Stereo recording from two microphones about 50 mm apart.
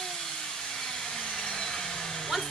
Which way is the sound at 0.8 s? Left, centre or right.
Centre.